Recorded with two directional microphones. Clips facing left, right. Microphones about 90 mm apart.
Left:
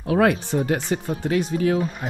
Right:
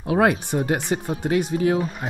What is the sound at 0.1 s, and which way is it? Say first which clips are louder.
Speech: even; 15° right (ahead or behind).